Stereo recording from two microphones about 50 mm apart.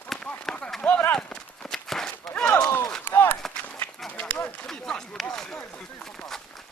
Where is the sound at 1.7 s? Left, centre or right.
Centre.